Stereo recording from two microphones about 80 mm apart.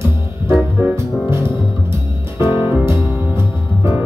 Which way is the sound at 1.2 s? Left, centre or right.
Right.